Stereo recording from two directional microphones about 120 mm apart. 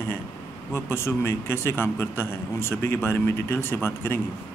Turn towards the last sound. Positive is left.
turn(degrees=20)  # may be behind; listen again after turning